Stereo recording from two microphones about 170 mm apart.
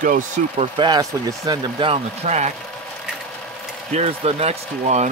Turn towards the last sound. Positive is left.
turn(degrees=-40)  # may be behind; listen again after turning